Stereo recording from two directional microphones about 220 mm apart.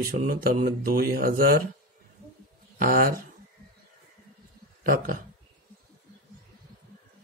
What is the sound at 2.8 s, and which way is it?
Speech, 40° right (ahead or behind).